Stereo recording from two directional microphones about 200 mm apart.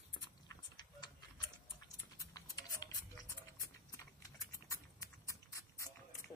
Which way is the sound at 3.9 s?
15° left (ahead or behind).